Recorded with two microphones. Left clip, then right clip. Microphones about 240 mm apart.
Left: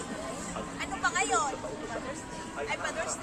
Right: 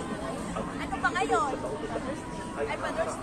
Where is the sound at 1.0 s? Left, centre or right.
Left.